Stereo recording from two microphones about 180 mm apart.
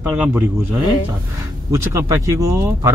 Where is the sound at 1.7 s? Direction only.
15° right (ahead or behind).